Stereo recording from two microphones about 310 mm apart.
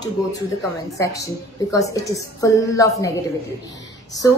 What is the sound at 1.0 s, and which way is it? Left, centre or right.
A woman's voice, centre.